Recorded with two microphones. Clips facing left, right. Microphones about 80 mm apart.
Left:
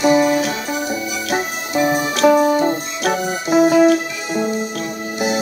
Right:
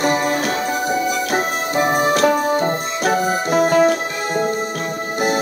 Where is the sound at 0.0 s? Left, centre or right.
Right.